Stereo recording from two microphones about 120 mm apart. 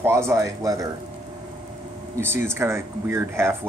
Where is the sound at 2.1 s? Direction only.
20° right (ahead or behind).